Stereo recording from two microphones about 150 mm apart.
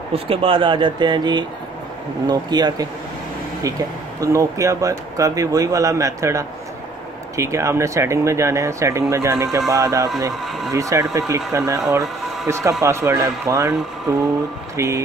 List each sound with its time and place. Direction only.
0.1 s speech: 40° right (ahead or behind)
4.2 s speech: 20° right (ahead or behind)